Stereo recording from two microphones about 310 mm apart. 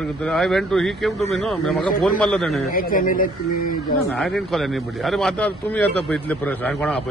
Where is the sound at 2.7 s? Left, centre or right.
Left.